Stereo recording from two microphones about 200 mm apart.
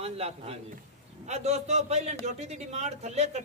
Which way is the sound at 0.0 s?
30° right (ahead or behind).